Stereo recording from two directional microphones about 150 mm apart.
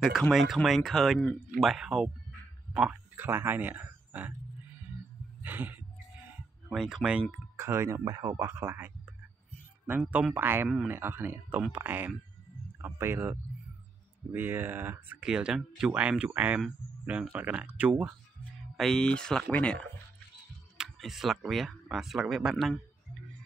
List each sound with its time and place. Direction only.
0.0 s speech: centre (ahead or behind)
5.4 s a sound: 10° right (ahead or behind)
6.7 s speech: 5° right (ahead or behind)
18.8 s speech: 5° left (ahead or behind)